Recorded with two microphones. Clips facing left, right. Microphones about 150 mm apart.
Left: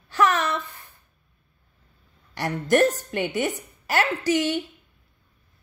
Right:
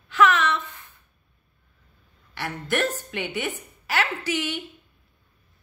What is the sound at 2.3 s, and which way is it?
A woman's voice, 40° left (ahead or behind).